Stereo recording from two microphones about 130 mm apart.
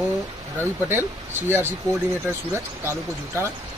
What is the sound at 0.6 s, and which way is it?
Speech, 15° right (ahead or behind).